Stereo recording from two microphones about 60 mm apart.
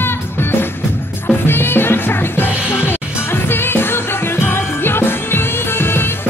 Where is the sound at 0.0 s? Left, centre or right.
Left.